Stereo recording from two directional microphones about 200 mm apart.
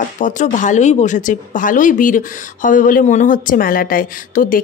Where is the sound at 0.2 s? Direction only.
40° left (ahead or behind).